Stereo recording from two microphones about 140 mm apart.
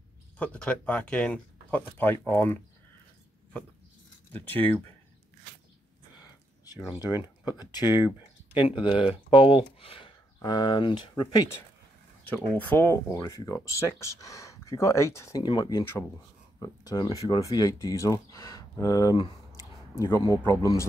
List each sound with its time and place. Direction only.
0.4 s speech: 10° left (ahead or behind)
4.3 s speech: 15° left (ahead or behind)
7.4 s speech: 30° left (ahead or behind)
12.5 s speech: 15° left (ahead or behind)